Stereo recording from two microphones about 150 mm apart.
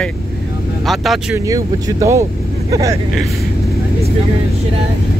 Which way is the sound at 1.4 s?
20° right (ahead or behind).